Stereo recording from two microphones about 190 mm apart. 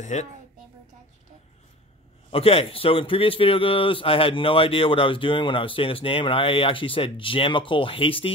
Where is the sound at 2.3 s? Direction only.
30° left (ahead or behind).